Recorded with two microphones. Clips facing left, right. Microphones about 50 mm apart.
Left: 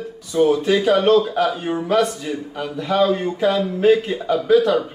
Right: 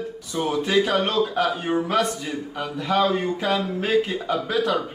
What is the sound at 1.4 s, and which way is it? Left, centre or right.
Speech, centre.